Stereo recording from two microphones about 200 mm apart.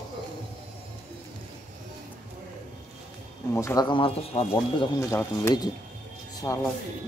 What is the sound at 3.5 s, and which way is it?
Speech, 15° left (ahead or behind).